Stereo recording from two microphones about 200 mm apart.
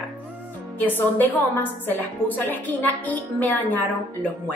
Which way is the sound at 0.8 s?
10° left (ahead or behind).